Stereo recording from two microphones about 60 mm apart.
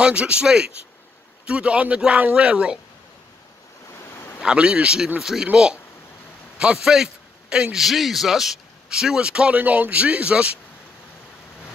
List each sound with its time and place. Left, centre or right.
0.0 s speech: centre
4.4 s a man's voice: centre
7.8 s speech: centre; by 10.6 s right